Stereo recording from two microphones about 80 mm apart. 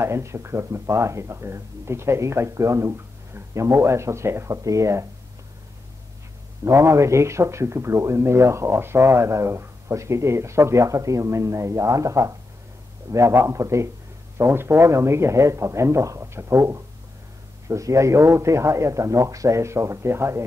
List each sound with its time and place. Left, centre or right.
0.0 s speech: right
6.6 s speech: right